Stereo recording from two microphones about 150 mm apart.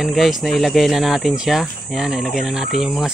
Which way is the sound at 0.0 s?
Centre (ahead or behind).